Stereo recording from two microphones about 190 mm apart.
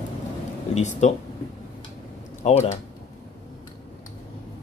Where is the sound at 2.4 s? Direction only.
35° left (ahead or behind).